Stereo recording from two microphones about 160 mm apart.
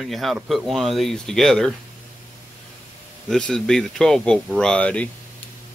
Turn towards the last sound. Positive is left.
turn(degrees=5)  # may be behind; listen again after turning